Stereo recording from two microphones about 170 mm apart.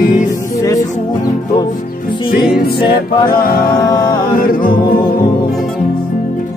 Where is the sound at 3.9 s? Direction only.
25° left (ahead or behind).